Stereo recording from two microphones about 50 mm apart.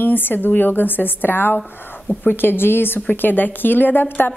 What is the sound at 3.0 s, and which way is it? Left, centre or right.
A woman's voice, left.